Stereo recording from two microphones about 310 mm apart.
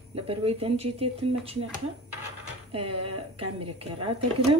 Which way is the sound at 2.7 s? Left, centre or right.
Centre.